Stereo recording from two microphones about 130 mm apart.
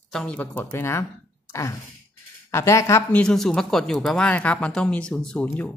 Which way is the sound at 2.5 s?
20° left (ahead or behind).